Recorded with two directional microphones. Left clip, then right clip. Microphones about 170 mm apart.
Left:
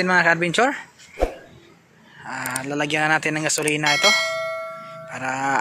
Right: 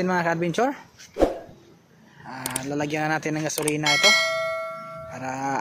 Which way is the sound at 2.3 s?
Centre (ahead or behind).